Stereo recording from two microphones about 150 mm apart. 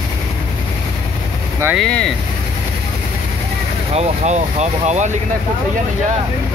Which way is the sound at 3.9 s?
50° right (ahead or behind).